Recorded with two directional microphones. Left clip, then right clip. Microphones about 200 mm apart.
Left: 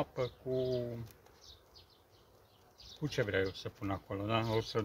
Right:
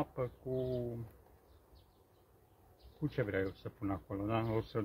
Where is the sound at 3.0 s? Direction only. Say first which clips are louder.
Left 3 dB; 15° left (ahead or behind).